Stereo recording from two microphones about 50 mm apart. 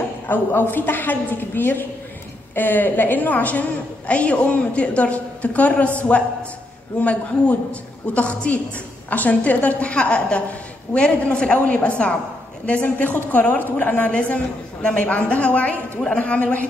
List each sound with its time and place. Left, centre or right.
0.3 s a woman's voice: left